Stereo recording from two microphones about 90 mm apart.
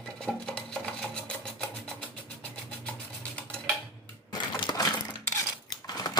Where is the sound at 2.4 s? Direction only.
15° left (ahead or behind).